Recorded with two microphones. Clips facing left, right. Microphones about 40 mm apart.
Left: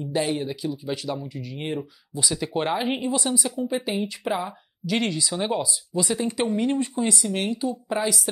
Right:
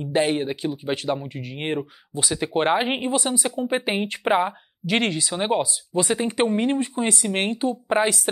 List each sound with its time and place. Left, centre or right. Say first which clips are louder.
0.0 s speech: right 4 dB; right
1.8 s speech: right 2 dB; right